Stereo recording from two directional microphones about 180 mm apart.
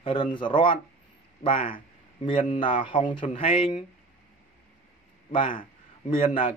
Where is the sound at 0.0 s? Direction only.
30° left (ahead or behind).